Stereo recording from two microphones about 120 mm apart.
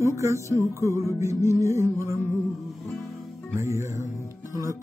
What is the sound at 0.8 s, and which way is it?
Speech, 25° right (ahead or behind).